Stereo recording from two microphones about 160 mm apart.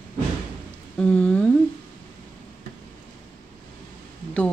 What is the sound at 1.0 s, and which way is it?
Speech, 5° left (ahead or behind).